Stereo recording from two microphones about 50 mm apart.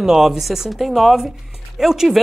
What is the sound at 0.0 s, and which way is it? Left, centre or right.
Speech, centre.